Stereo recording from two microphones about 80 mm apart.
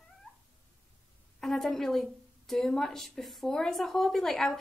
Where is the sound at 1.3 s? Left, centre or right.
Centre.